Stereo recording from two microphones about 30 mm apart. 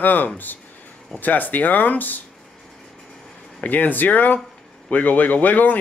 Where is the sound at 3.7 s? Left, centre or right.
Left.